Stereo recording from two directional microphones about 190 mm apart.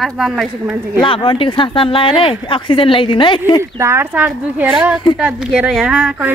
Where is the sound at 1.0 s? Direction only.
30° left (ahead or behind).